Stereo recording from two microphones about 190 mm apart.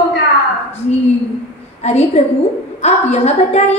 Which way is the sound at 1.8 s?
35° left (ahead or behind).